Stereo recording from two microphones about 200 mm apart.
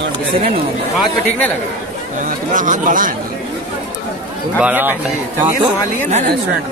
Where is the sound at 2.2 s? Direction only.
40° right (ahead or behind).